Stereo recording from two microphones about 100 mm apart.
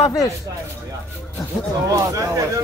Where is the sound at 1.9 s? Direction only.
35° right (ahead or behind).